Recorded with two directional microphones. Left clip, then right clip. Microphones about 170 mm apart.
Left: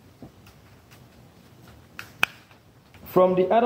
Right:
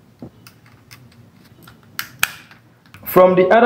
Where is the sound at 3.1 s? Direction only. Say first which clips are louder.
Right 8 dB; 10° left (ahead or behind).